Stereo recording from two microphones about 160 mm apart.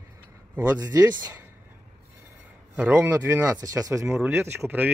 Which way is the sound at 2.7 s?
10° right (ahead or behind).